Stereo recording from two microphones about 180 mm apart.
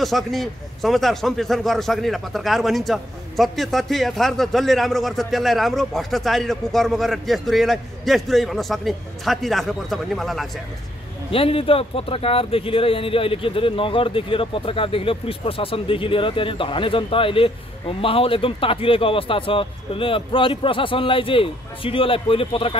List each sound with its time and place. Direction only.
0.0 s a man's voice: centre (ahead or behind)
11.3 s speech: 30° left (ahead or behind)